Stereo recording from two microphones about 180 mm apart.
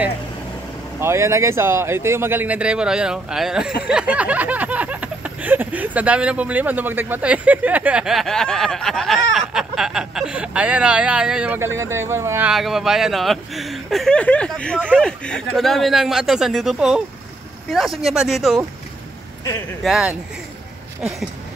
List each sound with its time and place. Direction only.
0.9 s speech: 15° right (ahead or behind)
3.8 s a sound: 5° right (ahead or behind)
12.5 s speech: centre (ahead or behind)
19.8 s speech: 5° right (ahead or behind)